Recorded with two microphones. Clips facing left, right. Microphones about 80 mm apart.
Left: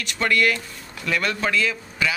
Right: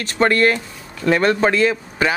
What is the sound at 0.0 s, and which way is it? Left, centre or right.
Speech, right.